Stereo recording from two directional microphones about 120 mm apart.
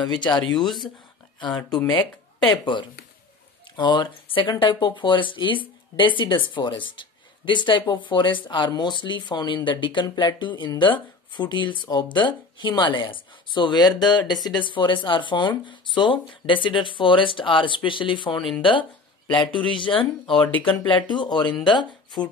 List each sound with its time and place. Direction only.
0.0 s speech: 40° left (ahead or behind)
1.5 s speech: 5° left (ahead or behind)
1.9 s speech: 40° left (ahead or behind)